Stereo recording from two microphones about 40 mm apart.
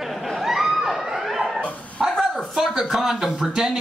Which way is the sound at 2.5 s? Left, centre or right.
Centre.